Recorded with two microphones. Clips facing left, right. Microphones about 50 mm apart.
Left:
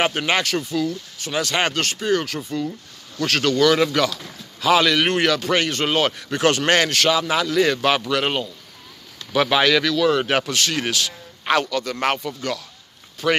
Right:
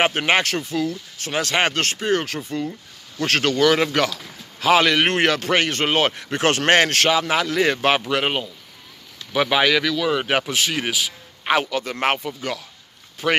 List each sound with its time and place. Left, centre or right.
0.0 s a man's voice: right
9.3 s speech: centre